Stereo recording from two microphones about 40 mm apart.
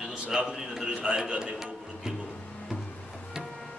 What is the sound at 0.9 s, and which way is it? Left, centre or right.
Speech, right.